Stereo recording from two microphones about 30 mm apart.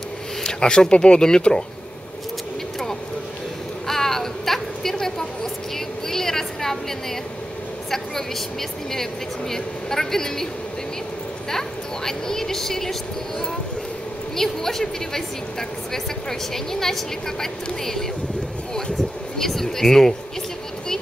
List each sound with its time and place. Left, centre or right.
0.4 s a sound: left
0.9 s speech: left
3.8 s a sound: centre
6.0 s vehicle: centre
9.5 s speech: centre
11.5 s speech: centre
14.3 s speech: centre
19.3 s speech: centre